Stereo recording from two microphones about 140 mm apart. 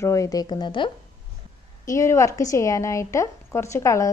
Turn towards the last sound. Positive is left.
turn(degrees=20)  # may be behind; listen again after turning